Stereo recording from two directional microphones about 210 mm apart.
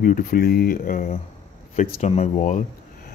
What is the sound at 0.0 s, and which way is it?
Speech, 40° left (ahead or behind).